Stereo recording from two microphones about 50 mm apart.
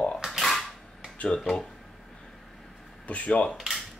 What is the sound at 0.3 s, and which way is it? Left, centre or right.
Creak, centre.